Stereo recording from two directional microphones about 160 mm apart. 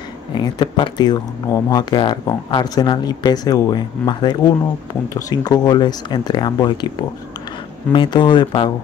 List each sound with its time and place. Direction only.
0.3 s speech: 25° left (ahead or behind)